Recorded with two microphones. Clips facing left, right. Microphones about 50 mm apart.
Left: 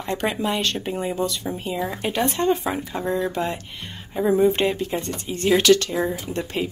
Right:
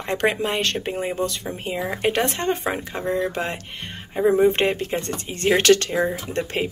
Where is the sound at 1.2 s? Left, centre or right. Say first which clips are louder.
Left 1 dB; right.